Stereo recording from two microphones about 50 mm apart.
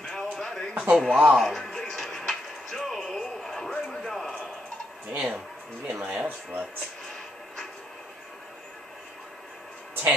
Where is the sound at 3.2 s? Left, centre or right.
Centre.